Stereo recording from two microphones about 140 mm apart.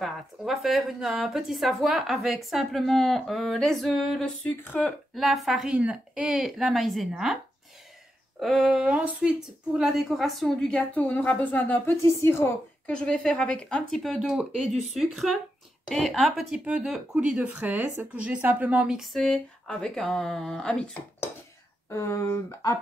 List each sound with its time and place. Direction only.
0.0 s speech: centre (ahead or behind)
4.5 s a woman's voice: 10° left (ahead or behind)
5.1 s speech: centre (ahead or behind)
8.4 s a woman's voice: centre (ahead or behind)
21.9 s speech: 20° left (ahead or behind)